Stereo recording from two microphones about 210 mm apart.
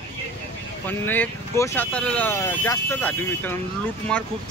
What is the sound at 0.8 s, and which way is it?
Speech, 10° left (ahead or behind).